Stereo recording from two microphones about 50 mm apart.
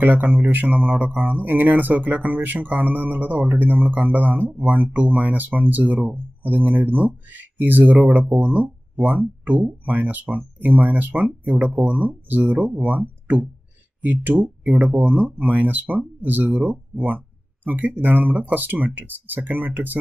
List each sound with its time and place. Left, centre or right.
0.0 s speech: right
9.0 s speech: centre
9.4 s speech: right
12.5 s speech: right